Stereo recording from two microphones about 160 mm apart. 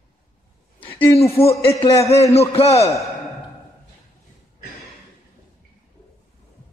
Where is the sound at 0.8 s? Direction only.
15° left (ahead or behind).